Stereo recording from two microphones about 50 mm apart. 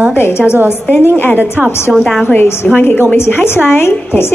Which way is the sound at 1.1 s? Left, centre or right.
Left.